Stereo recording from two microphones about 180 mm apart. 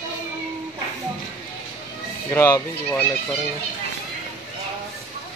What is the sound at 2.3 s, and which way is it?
Speech, 15° left (ahead or behind).